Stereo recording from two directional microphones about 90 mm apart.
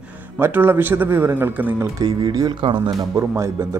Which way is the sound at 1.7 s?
45° right (ahead or behind).